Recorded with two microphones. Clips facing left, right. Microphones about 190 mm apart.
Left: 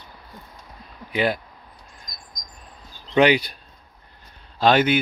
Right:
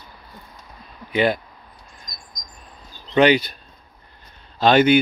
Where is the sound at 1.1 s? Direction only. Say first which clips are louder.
Right 3 dB; 5° left (ahead or behind).